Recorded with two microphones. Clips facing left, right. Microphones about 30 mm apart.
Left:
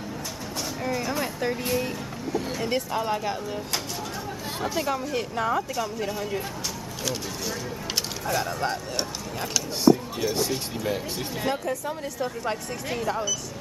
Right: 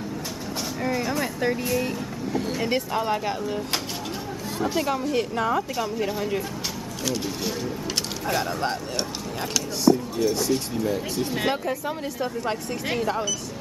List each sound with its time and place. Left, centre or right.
0.8 s speech: centre
1.1 s vehicle: centre
1.8 s speech: centre
4.6 s a woman's voice: centre
8.3 s a woman's voice: centre
9.8 s speech: centre
11.3 s speech: right
11.6 s a woman's voice: centre